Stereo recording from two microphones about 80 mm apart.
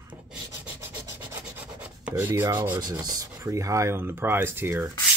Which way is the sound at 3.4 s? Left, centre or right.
Right.